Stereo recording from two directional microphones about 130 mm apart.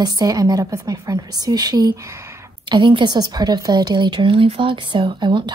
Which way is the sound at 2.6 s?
40° right (ahead or behind).